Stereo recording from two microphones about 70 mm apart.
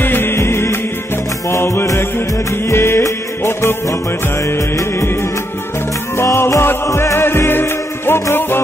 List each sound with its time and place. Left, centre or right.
0.0 s music: left
4.5 s music: left
6.1 s music: left